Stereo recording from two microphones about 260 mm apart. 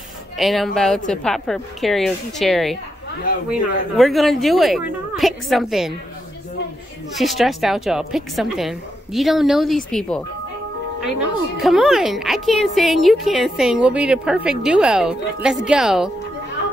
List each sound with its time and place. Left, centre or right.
0.4 s speech: centre
7.2 s speech: centre
11.6 s speech: centre